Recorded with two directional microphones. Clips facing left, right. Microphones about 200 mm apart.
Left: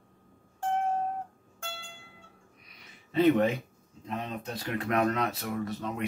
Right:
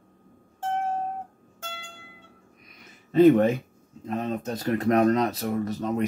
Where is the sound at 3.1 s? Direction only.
45° right (ahead or behind).